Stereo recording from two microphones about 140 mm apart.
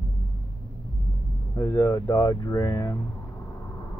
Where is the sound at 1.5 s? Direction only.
25° left (ahead or behind).